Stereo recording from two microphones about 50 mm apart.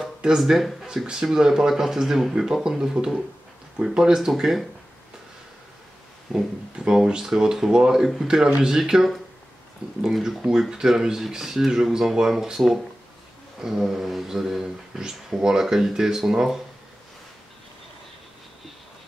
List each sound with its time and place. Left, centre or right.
0.0 s a sound: centre
0.4 s speech: centre
6.3 s speech: centre
6.8 s speech: centre
9.8 s speech: right
10.3 s speech: centre